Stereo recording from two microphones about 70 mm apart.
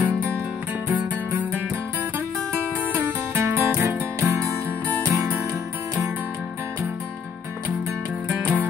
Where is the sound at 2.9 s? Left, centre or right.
Right.